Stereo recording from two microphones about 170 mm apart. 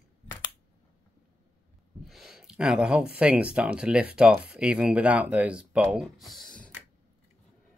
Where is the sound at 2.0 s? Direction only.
Centre (ahead or behind).